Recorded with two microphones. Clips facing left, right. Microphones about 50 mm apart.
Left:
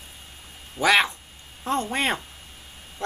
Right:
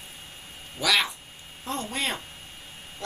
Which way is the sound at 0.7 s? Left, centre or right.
Left.